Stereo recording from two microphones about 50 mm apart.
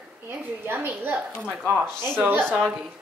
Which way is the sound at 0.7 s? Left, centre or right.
Right.